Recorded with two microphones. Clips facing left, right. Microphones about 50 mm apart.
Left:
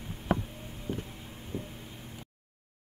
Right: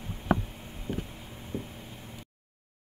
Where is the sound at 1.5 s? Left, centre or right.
Right.